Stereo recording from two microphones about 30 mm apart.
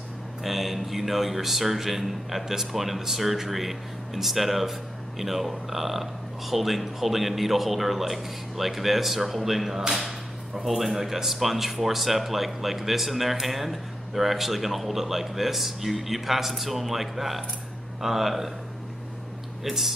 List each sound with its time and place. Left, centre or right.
0.4 s speech: centre
19.6 s speech: centre